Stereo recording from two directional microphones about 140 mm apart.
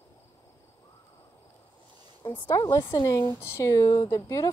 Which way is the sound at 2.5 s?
25° left (ahead or behind).